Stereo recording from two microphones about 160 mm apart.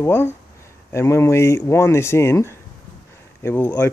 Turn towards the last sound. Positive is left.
turn(degrees=15)  # may be behind; listen again after turning